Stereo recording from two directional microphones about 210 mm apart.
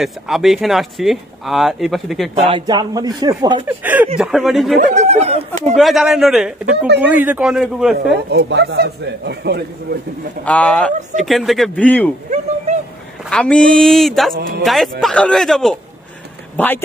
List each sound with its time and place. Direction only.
0.0 s speech: centre (ahead or behind)
2.4 s speech: 20° right (ahead or behind)
3.6 s speech: 10° right (ahead or behind)
4.9 s speech: 30° right (ahead or behind)
5.8 s speech: centre (ahead or behind)
8.3 s speech: 55° right (ahead or behind)
10.4 s speech: 5° left (ahead or behind)
13.3 s speech: 5° left (ahead or behind)